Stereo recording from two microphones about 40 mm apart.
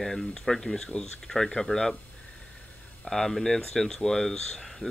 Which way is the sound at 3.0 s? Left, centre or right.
Centre.